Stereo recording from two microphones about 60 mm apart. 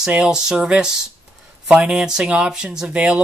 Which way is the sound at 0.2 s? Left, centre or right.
Centre.